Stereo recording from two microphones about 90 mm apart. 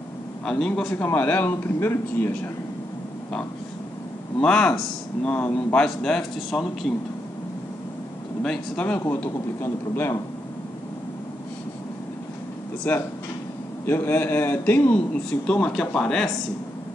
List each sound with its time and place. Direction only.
0.7 s a man's voice: 10° left (ahead or behind); by 2.5 s 25° left (ahead or behind)
4.4 s speech: 10° left (ahead or behind)
5.9 s speech: 5° left (ahead or behind)
8.4 s a man's voice: 10° left (ahead or behind)
12.9 s a man's voice: 25° left (ahead or behind); by 16.3 s 5° left (ahead or behind)